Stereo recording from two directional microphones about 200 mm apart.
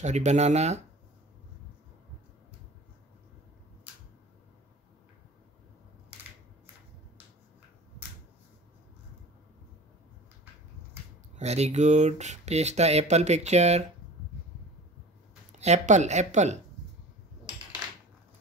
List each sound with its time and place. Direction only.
0.0 s speech: 35° right (ahead or behind)
11.3 s speech: 35° right (ahead or behind)
15.5 s speech: 35° right (ahead or behind)